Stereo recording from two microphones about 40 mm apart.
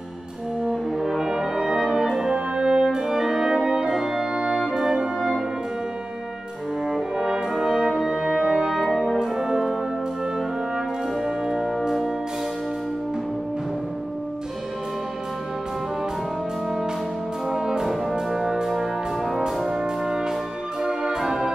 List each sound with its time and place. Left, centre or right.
0.9 s brass instrument: centre
2.3 s brass instrument: right
4.0 s organ: centre
4.6 s brass instrument: centre
6.9 s brass instrument: centre
8.5 s music: centre
11.2 s music: centre
17.5 s brass instrument: centre
20.8 s music: centre
21.2 s music: centre